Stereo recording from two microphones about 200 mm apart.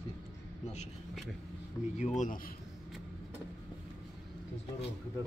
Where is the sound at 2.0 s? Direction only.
40° left (ahead or behind).